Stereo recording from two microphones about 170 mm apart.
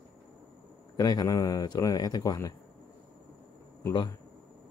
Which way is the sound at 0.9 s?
20° left (ahead or behind).